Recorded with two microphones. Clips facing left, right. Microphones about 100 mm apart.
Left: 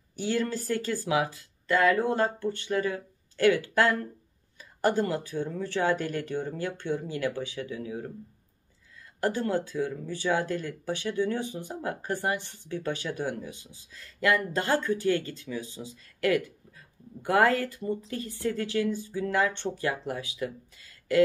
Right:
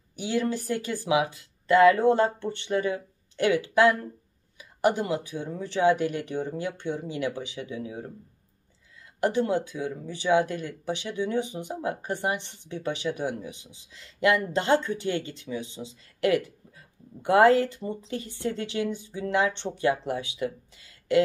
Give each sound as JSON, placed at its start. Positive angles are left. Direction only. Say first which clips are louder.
{"t": 0.1, "sound": "speech", "louder": "right 1 dB", "side_deg": -15}